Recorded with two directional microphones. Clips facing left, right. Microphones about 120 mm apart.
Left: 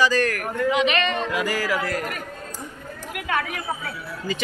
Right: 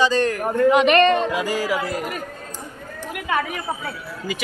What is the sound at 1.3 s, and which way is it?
Speech, 20° right (ahead or behind).